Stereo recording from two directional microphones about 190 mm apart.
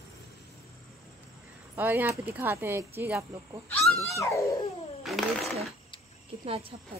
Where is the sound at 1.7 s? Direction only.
10° right (ahead or behind).